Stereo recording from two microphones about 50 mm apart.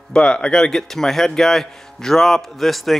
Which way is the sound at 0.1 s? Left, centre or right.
Centre.